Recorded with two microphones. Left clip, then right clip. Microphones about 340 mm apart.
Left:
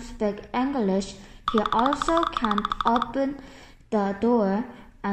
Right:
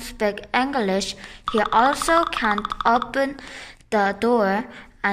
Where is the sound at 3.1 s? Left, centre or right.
Right.